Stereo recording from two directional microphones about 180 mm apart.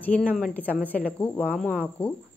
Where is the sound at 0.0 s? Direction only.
10° left (ahead or behind).